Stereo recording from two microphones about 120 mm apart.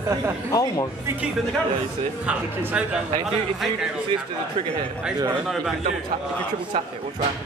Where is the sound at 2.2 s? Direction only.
10° right (ahead or behind).